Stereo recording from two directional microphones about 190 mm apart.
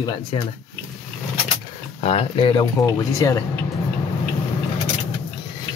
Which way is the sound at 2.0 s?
30° left (ahead or behind).